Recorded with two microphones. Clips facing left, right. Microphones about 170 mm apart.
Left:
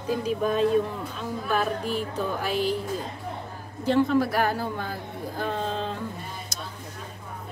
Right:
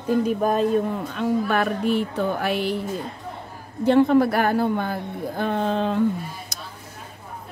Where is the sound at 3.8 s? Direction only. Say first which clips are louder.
Right 5 dB; 60° right (ahead or behind).